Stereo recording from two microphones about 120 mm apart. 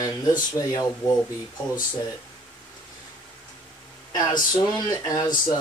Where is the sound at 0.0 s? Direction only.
35° left (ahead or behind).